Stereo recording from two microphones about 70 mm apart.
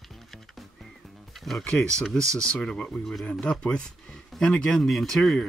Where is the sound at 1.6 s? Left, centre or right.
Centre.